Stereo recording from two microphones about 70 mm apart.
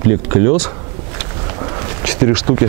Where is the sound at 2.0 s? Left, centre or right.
Centre.